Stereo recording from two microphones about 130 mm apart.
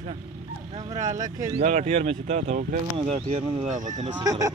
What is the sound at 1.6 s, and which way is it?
Speech, 60° right (ahead or behind).